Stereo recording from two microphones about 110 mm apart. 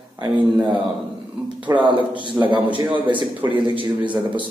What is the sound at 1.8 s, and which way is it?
A man's voice, 45° right (ahead or behind).